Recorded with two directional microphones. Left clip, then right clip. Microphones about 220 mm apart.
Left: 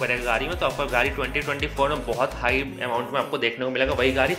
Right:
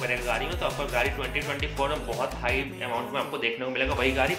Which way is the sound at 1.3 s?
25° left (ahead or behind).